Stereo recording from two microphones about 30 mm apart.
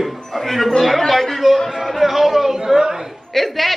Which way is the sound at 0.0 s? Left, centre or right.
Centre.